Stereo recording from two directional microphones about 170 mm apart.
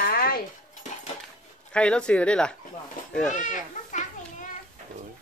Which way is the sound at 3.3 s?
50° left (ahead or behind).